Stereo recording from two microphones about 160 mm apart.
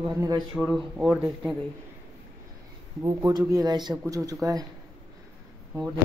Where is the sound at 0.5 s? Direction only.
Centre (ahead or behind).